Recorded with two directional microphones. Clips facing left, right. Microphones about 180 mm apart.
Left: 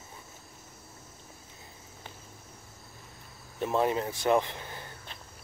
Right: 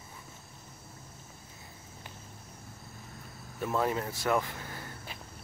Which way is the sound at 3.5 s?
20° left (ahead or behind).